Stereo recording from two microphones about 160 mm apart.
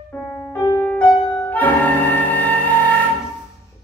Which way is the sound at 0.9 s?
10° left (ahead or behind).